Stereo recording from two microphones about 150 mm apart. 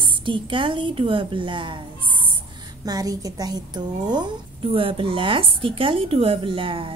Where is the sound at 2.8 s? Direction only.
25° right (ahead or behind).